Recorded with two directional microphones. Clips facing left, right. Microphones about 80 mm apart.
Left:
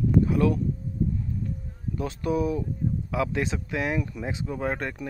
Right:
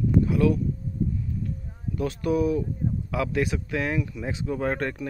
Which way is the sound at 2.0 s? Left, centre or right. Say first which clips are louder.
Right 2 dB; left.